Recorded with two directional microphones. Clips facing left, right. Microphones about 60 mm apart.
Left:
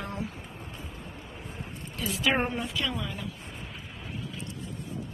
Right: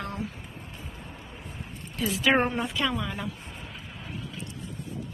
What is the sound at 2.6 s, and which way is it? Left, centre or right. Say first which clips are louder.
Speech: right 4 dB; right.